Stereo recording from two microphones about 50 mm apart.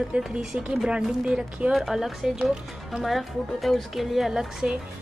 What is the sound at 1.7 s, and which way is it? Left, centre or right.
Speech, centre.